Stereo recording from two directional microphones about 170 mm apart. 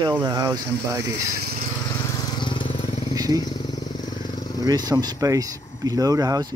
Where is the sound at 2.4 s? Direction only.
30° left (ahead or behind).